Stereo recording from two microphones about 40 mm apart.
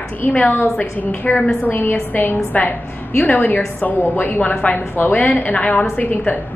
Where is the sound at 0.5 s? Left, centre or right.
Left.